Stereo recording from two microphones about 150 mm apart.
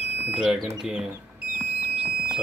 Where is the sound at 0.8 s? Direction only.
5° right (ahead or behind).